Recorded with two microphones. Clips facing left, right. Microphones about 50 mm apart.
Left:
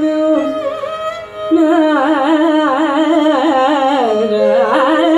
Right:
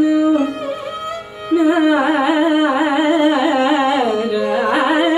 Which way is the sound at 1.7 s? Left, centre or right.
Centre.